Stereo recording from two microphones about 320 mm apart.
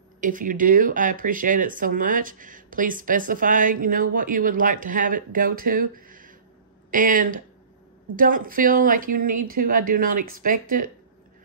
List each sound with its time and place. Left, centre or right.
0.2 s speech: right